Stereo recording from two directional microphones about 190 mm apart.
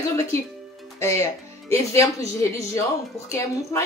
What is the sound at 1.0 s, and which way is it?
A woman's voice, 15° left (ahead or behind).